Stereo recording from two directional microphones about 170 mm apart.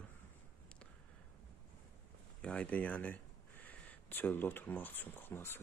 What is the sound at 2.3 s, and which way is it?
Speech, 5° left (ahead or behind).